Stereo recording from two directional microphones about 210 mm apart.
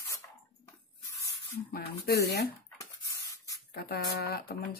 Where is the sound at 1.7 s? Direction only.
45° left (ahead or behind).